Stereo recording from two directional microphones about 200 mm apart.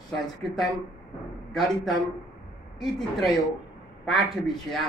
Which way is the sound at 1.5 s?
Centre (ahead or behind).